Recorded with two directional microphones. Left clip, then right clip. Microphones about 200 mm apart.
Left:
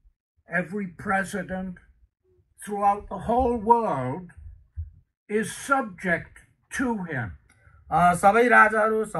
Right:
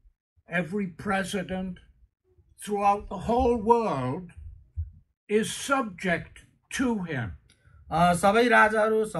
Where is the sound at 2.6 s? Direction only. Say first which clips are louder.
Left 1 dB; centre (ahead or behind).